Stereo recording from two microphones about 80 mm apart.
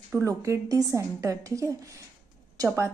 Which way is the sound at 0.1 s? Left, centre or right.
Right.